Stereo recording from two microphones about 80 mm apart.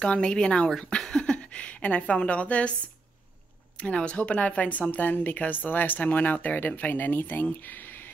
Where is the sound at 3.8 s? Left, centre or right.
Centre.